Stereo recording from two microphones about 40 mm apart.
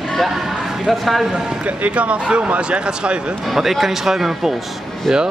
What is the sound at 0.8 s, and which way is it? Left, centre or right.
Speech, centre.